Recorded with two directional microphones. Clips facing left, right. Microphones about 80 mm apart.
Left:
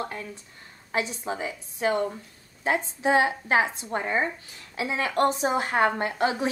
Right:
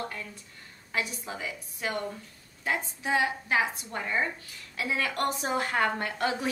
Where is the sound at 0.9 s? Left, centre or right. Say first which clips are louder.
Left 5 dB; left.